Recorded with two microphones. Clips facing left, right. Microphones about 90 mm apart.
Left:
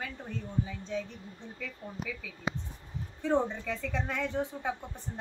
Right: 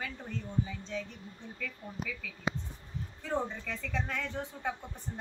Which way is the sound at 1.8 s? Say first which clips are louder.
Left 2 dB; 25° left (ahead or behind).